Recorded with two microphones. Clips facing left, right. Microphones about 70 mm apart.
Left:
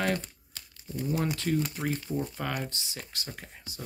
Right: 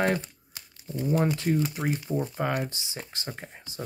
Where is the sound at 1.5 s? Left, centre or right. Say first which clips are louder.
Right 3 dB; centre.